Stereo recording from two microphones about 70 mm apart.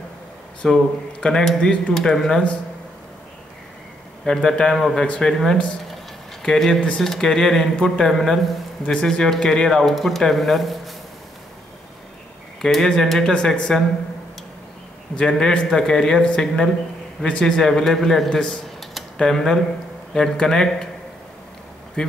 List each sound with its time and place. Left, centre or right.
0.6 s speech: centre
4.2 s speech: centre
5.0 s speech: centre
6.4 s speech: centre
8.8 s speech: centre
12.6 s speech: centre
15.1 s speech: centre
22.0 s speech: centre